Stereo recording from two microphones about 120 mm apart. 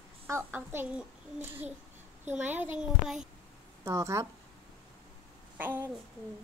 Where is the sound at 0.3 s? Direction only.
20° right (ahead or behind).